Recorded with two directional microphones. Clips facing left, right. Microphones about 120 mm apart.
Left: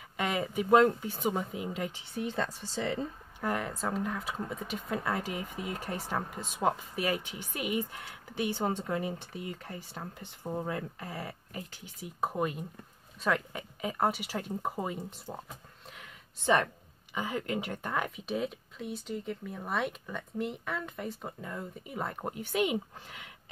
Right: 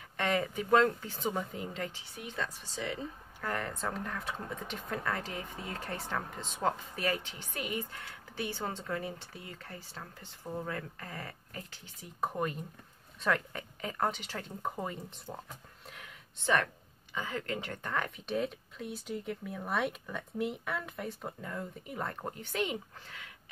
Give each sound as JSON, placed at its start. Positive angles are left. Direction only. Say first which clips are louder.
{"t": 0.2, "sound": "speech", "louder": "even", "side_deg": 10}
{"t": 2.1, "sound": "speech", "louder": "left 7 dB", "side_deg": 35}
{"t": 3.3, "sound": "speech", "louder": "left 3 dB", "side_deg": 10}
{"t": 16.4, "sound": "speech", "louder": "left 3 dB", "side_deg": 15}